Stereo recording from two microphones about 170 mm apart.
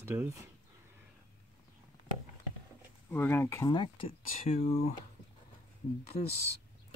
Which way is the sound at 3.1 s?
10° left (ahead or behind).